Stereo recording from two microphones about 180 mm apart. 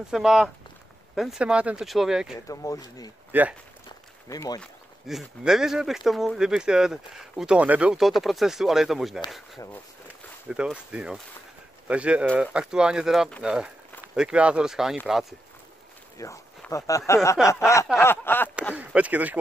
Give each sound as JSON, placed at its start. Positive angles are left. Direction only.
{"t": 0.1, "sound": "speech", "side_deg": 0}
{"t": 2.4, "sound": "speech", "side_deg": 20}
{"t": 3.3, "sound": "speech", "side_deg": -10}
{"t": 4.3, "sound": "speech", "side_deg": 20}
{"t": 4.6, "sound": "speech", "side_deg": 0}
{"t": 10.5, "sound": "speech", "side_deg": -5}
{"t": 16.2, "sound": "speech", "side_deg": 15}
{"t": 17.7, "sound": "a sound", "side_deg": 15}
{"t": 18.8, "sound": "speech", "side_deg": -5}